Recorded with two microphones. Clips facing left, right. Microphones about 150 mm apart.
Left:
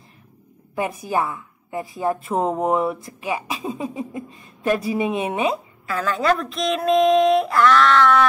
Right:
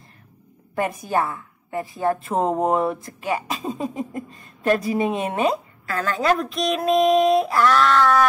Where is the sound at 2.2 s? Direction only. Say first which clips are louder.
Even; 30° right (ahead or behind).